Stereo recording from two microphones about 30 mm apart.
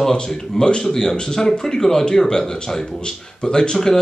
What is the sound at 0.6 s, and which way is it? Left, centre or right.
Speech, centre.